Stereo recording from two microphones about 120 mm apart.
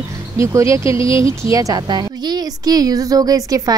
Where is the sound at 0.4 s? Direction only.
25° right (ahead or behind).